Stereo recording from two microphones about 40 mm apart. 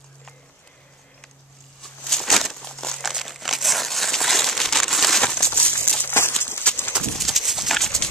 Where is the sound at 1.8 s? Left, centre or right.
Centre.